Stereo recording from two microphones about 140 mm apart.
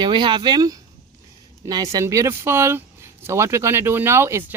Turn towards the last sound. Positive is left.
turn(degrees=-15)  # may be behind; listen again after turning